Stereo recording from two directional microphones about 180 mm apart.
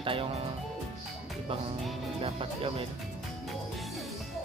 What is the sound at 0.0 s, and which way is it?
Speech, 30° right (ahead or behind).